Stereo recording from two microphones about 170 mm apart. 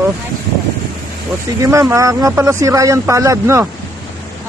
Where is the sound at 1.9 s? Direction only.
20° right (ahead or behind).